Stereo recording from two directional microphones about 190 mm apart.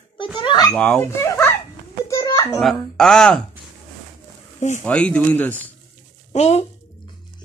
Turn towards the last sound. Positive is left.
turn(degrees=35)  # may be behind; listen again after turning